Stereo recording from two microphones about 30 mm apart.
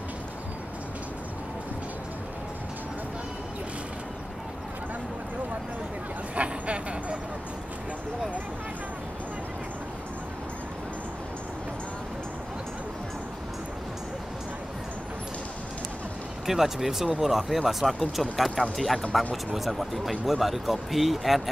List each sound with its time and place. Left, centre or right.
6.3 s a sound: right
16.4 s speech: centre
18.6 s speech: right
19.1 s speech: centre